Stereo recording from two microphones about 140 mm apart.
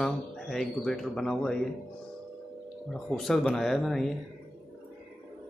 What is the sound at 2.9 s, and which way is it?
Speech, 5° left (ahead or behind).